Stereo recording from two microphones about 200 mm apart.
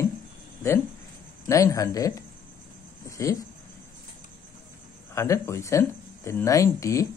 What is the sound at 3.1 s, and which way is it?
Speech, 15° left (ahead or behind).